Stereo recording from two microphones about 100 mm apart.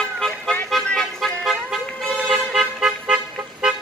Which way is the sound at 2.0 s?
Centre (ahead or behind).